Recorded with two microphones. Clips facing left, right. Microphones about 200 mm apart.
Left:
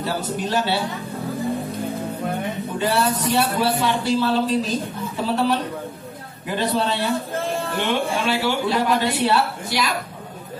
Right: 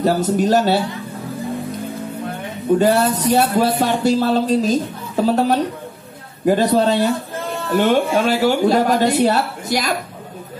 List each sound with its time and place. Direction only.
0.0 s speech: 45° right (ahead or behind)
2.8 s speech: 45° right (ahead or behind)